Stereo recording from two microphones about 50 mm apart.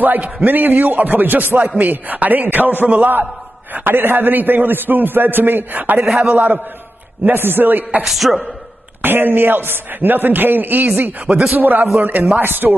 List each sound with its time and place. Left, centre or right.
0.0 s a man's voice: right
3.7 s a man's voice: right
6.0 s a man's voice: centre
6.3 s a man's voice: right
8.0 s a man's voice: centre
9.0 s a man's voice: right